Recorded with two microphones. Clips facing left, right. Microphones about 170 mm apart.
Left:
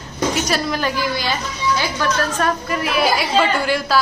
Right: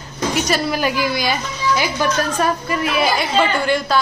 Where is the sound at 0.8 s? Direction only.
10° right (ahead or behind).